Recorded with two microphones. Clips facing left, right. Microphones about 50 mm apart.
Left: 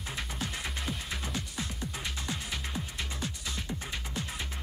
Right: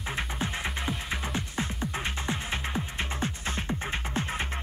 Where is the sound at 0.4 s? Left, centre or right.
Right.